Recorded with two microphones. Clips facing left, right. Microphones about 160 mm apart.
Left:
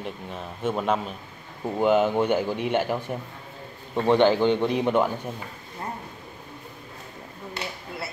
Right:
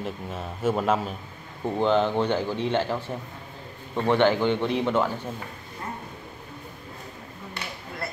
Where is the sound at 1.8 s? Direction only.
10° left (ahead or behind).